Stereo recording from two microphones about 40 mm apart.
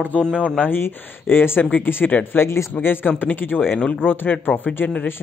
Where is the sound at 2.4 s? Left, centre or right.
Left.